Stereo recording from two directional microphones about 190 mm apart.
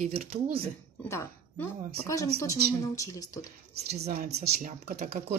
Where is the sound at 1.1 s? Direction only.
15° left (ahead or behind).